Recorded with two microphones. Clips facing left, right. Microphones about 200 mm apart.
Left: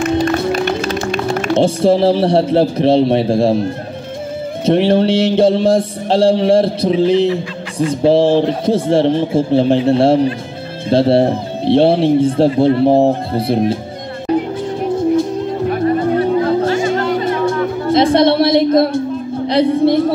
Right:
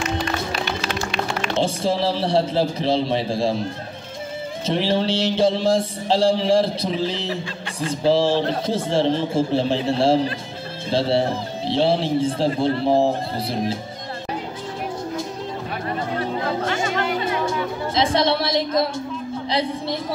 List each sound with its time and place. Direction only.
0.0 s music: 50° left (ahead or behind)
4.6 s speech: 55° left (ahead or behind)
16.2 s music: 35° left (ahead or behind)
17.5 s music: 55° left (ahead or behind)
19.4 s a sound: 60° left (ahead or behind)